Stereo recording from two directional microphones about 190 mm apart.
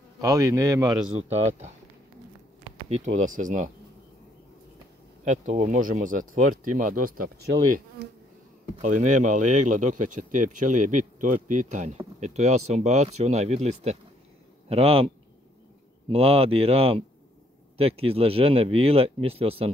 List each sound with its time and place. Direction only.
0.2 s a man's voice: 15° right (ahead or behind)
1.1 s speech: 35° right (ahead or behind)
2.9 s speech: 40° right (ahead or behind)
5.2 s speech: 35° right (ahead or behind)
7.6 s bee: 45° right (ahead or behind)
8.8 s speech: 40° right (ahead or behind)
16.1 s speech: 30° right (ahead or behind)